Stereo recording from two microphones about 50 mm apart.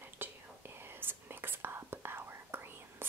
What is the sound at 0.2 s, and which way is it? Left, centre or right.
Whispering, right.